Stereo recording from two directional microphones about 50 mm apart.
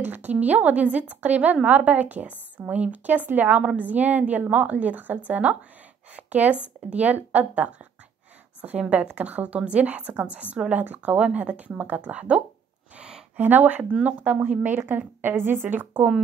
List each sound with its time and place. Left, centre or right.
0.0 s a woman's voice: right
12.9 s a sound: centre
13.4 s a woman's voice: right
14.8 s a woman's voice: right